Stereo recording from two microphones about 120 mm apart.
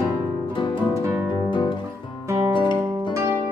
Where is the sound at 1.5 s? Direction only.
45° left (ahead or behind).